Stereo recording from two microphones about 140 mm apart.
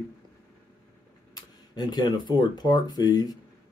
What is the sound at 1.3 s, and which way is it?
Speech, 30° left (ahead or behind).